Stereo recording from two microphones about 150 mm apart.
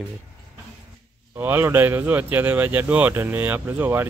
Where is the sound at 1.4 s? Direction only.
15° right (ahead or behind).